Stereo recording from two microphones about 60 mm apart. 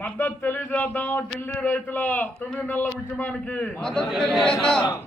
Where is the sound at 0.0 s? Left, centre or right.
Left.